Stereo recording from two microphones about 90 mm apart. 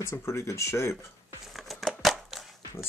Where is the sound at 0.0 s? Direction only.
30° left (ahead or behind).